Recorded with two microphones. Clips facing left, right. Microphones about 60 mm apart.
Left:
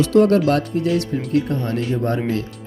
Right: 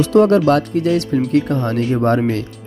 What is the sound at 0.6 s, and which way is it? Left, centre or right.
Speech, right.